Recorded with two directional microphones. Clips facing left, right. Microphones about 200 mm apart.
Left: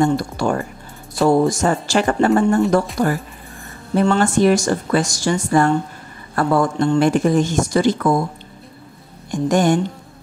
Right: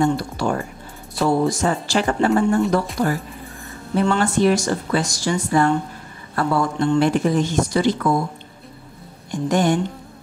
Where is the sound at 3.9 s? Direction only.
45° left (ahead or behind).